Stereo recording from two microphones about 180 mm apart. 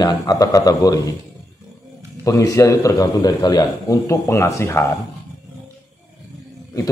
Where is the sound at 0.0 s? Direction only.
20° left (ahead or behind).